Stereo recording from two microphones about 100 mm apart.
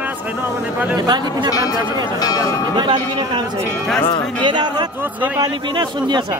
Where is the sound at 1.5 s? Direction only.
40° left (ahead or behind).